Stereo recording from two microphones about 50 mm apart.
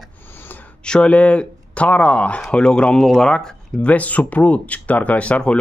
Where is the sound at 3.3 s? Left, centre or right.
Centre.